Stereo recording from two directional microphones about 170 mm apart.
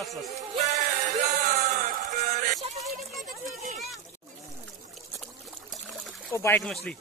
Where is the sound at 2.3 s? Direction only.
50° right (ahead or behind).